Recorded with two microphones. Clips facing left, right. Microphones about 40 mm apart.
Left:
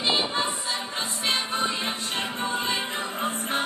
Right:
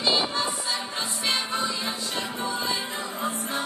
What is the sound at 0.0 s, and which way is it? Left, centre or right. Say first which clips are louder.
Music: even; left.